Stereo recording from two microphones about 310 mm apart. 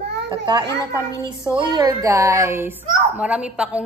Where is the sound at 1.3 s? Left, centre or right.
Centre.